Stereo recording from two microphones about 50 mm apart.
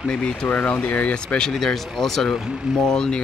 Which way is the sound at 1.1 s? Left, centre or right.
Centre.